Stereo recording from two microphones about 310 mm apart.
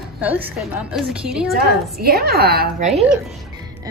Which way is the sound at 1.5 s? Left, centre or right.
Right.